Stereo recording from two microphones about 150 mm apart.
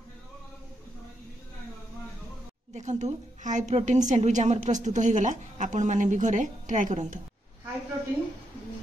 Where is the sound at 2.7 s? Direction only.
50° right (ahead or behind).